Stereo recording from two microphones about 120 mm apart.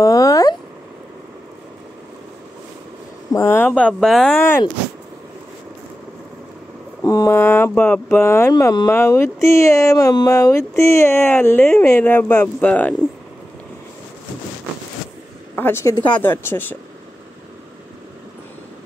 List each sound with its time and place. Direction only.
0.0 s a sound: 30° left (ahead or behind)
3.3 s speech: 20° left (ahead or behind); by 4.4 s 5° left (ahead or behind)
4.4 s speech: 20° left (ahead or behind)
7.0 s speech: 25° left (ahead or behind)
15.5 s speech: 20° left (ahead or behind)